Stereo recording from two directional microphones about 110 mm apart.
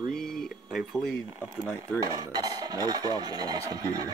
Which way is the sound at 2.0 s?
35° right (ahead or behind).